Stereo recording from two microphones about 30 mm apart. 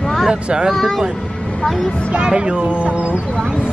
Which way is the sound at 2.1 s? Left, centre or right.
Right.